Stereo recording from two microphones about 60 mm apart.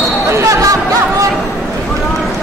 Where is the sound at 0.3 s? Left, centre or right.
Right.